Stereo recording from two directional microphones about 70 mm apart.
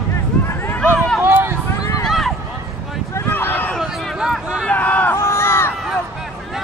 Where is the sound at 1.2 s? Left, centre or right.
Right.